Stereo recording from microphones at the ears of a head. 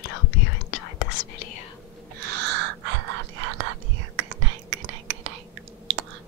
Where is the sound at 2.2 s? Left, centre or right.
Right.